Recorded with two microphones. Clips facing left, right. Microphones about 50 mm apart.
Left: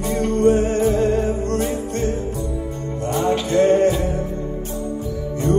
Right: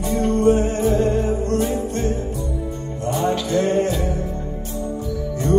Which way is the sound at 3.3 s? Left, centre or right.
Left.